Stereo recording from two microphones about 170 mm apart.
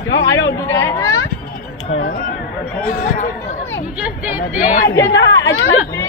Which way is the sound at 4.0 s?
10° right (ahead or behind).